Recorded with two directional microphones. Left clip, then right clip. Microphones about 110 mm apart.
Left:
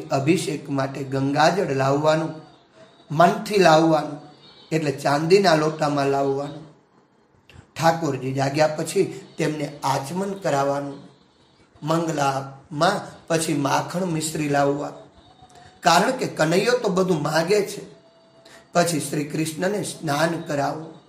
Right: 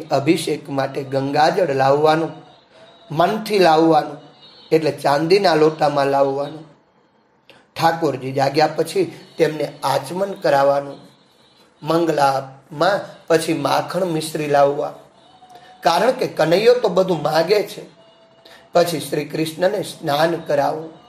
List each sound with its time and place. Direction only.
0.1 s a man's voice: 15° right (ahead or behind)
7.7 s a man's voice: 20° right (ahead or behind)
11.8 s a man's voice: 25° right (ahead or behind); by 17.6 s 10° right (ahead or behind)
18.7 s speech: 15° right (ahead or behind)